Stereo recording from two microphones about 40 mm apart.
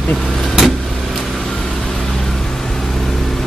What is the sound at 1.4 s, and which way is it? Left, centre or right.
Vehicle, centre.